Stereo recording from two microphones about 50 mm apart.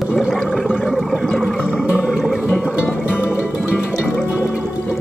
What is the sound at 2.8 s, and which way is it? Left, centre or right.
Music, left.